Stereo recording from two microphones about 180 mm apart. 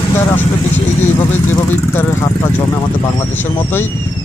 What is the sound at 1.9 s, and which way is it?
Speech, 10° left (ahead or behind).